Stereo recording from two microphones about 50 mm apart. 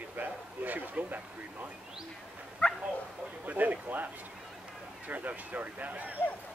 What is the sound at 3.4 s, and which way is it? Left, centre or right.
Speech, right.